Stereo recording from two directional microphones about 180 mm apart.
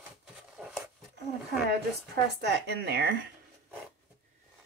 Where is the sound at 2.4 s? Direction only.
65° right (ahead or behind).